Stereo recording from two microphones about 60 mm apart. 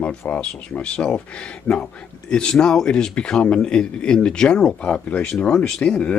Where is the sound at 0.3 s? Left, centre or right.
Centre.